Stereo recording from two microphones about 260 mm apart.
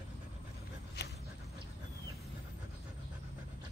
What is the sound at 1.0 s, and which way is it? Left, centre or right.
Dog, left.